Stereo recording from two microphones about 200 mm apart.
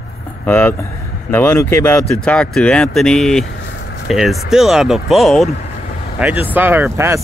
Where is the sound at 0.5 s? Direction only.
10° left (ahead or behind).